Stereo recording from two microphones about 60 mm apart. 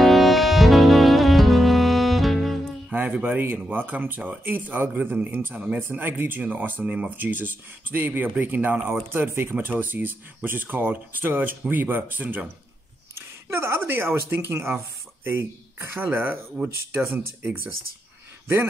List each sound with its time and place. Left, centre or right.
0.0 s music: centre
3.1 s a man's voice: right
13.1 s speech: right
17.1 s a man's voice: right